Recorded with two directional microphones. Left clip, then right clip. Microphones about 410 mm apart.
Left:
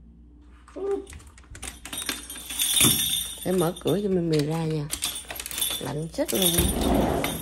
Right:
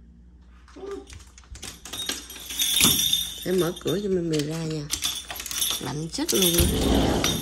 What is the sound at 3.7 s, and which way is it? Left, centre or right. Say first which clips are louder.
Speech: left 1 dB; left.